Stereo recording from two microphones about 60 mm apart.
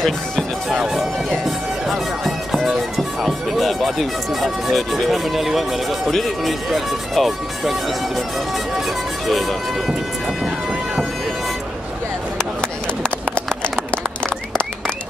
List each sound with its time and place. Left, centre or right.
0.0 s speech: centre
0.7 s speech: centre
1.9 s bagpipes: centre
3.0 s speech: centre
9.3 s speech: centre
14.2 s a sound: centre